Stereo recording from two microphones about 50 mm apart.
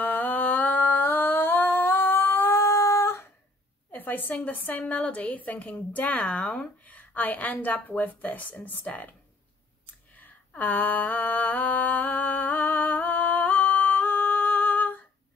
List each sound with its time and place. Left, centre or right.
0.0 s humming: left
3.9 s a woman's voice: left
10.6 s a sound: left